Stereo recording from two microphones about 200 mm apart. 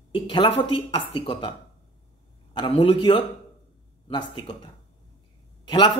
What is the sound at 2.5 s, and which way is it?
A woman's voice, 25° left (ahead or behind).